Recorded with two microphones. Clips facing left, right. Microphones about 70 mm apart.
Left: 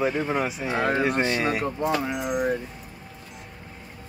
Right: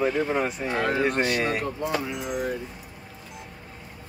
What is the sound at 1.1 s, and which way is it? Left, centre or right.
Speech, left.